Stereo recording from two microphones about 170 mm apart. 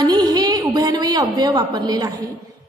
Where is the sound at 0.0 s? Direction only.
25° right (ahead or behind).